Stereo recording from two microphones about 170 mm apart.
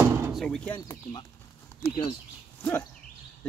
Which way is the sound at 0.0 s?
15° right (ahead or behind).